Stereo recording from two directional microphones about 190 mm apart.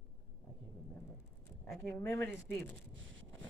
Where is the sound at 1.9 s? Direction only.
15° left (ahead or behind).